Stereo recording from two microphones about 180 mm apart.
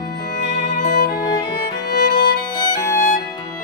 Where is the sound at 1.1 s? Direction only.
20° left (ahead or behind).